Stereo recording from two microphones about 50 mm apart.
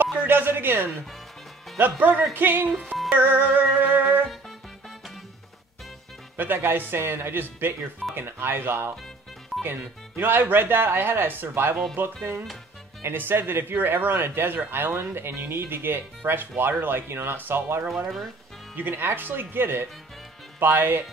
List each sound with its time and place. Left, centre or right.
0.3 s a sound: right
1.8 s music: right
2.3 s speech: right
3.1 s music: right
6.3 s speech: right
13.0 s speech: right